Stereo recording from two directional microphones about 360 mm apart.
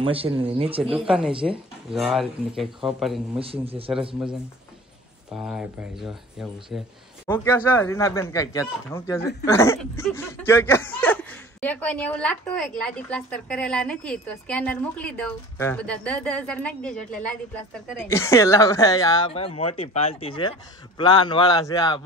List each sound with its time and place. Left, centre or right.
0.0 s speech: centre
0.9 s speech: centre
3.6 s speech: centre
5.3 s speech: centre